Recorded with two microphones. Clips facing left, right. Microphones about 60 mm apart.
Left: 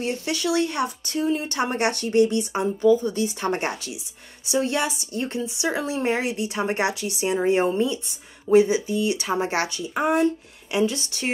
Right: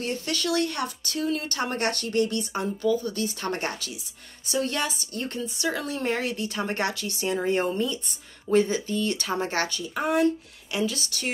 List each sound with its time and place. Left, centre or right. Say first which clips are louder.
0.0 s a woman's voice: left 3 dB; centre